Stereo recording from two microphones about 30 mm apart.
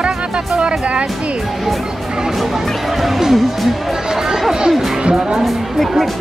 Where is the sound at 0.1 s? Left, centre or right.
Right.